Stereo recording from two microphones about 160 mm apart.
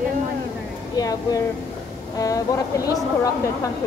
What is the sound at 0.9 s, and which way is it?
Speech, 25° left (ahead or behind).